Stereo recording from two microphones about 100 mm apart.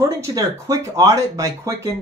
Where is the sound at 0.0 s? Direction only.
35° right (ahead or behind).